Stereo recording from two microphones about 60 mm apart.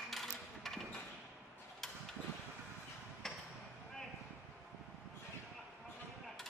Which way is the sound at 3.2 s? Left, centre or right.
Centre.